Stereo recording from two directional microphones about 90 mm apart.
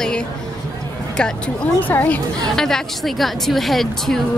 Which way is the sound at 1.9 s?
20° left (ahead or behind).